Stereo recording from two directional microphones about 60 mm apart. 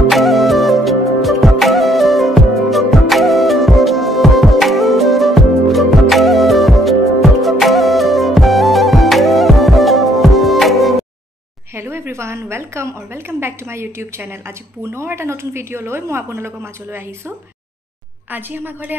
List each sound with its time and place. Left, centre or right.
0.1 s music: centre
11.7 s a woman's voice: right
18.3 s a woman's voice: right